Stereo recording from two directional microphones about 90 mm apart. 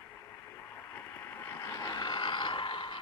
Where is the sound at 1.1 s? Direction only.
25° left (ahead or behind).